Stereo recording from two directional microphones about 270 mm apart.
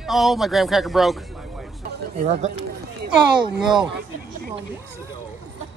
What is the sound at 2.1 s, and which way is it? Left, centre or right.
Speech, right.